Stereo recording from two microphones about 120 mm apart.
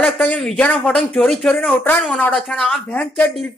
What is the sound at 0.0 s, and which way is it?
A woman's voice, 10° left (ahead or behind).